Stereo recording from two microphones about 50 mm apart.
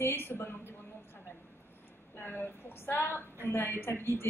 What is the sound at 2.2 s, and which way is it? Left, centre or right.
A woman's voice, left.